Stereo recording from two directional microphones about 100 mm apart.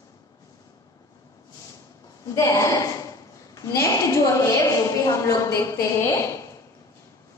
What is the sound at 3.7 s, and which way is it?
A woman's voice, 30° left (ahead or behind).